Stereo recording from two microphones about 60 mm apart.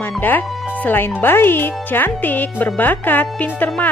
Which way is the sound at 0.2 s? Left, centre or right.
Left.